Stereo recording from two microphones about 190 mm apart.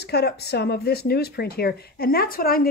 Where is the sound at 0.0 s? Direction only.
60° left (ahead or behind).